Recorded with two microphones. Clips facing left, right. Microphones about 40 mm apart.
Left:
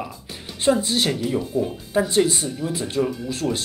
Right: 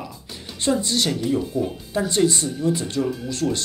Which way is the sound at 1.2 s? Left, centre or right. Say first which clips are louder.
Even; centre.